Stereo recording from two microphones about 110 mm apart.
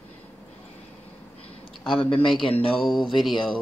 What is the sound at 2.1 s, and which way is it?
Speech, 5° left (ahead or behind).